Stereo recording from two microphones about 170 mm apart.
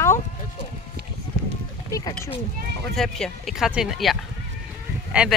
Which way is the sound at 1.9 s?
20° left (ahead or behind).